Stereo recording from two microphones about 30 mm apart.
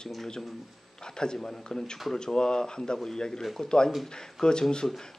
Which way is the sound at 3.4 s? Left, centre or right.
Centre.